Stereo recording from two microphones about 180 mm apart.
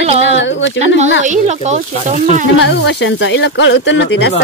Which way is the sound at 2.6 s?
80° left.